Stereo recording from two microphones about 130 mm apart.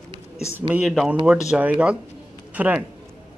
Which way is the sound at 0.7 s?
5° right (ahead or behind).